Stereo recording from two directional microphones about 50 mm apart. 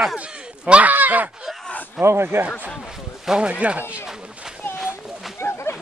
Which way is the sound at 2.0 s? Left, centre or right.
Right.